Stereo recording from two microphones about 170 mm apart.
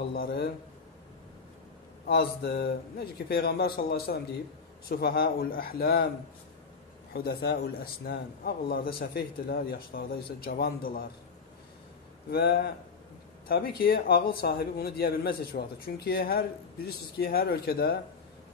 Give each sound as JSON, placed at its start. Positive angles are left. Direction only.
{"t": 0.0, "sound": "a sound", "side_deg": 65}
{"t": 2.0, "sound": "a man's voice", "side_deg": 70}
{"t": 7.2, "sound": "a man's voice", "side_deg": 70}
{"t": 12.3, "sound": "a man's voice", "side_deg": 65}